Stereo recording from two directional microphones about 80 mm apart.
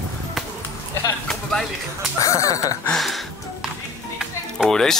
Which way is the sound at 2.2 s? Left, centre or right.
Left.